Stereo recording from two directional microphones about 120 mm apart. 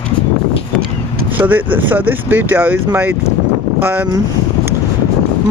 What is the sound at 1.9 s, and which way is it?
Speech, 15° right (ahead or behind).